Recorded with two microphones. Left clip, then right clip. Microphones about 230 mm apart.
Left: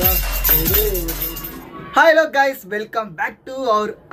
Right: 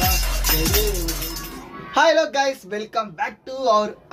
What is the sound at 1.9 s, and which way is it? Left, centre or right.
A man's voice, centre.